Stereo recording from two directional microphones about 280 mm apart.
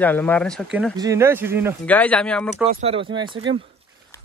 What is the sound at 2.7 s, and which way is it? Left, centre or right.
Speech, right.